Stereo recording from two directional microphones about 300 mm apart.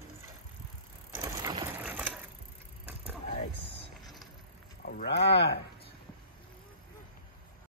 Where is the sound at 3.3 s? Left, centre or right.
Left.